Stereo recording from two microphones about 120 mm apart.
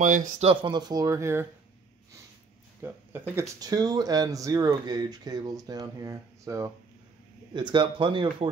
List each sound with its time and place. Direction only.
0.0 s speech: 90° right
0.5 s speech: 45° right (ahead or behind); by 1.5 s 20° right (ahead or behind)
2.8 s speech: 20° right (ahead or behind)
3.5 s speech: 30° right (ahead or behind)
7.5 s speech: 40° right (ahead or behind)